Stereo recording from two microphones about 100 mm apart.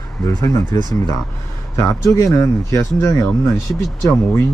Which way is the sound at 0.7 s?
45° right (ahead or behind).